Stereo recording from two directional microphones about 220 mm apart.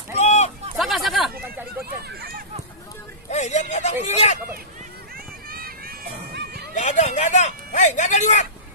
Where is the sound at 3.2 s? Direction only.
30° left (ahead or behind).